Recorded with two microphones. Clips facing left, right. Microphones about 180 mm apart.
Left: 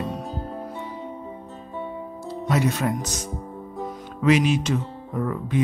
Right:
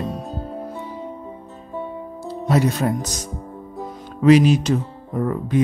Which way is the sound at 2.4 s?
35° right (ahead or behind).